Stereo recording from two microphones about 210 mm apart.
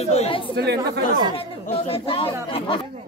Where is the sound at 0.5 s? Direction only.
50° right (ahead or behind).